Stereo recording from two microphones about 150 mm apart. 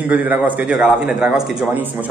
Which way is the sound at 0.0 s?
10° right (ahead or behind).